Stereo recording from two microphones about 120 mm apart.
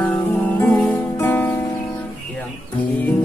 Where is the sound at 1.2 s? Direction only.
15° left (ahead or behind).